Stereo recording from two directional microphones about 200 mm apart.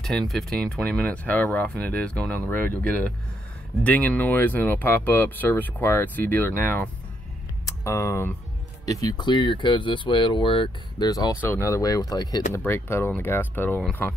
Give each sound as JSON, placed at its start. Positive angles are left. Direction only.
{"t": 0.3, "sound": "speech", "side_deg": 0}